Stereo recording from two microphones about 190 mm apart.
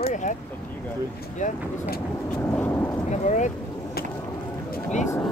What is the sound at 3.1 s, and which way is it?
Speech, 40° left (ahead or behind).